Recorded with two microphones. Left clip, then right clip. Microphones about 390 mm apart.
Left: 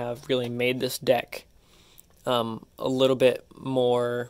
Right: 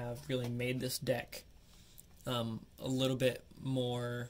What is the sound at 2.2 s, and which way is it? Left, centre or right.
Speech, centre.